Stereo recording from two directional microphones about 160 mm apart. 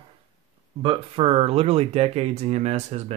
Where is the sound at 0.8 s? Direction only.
35° right (ahead or behind).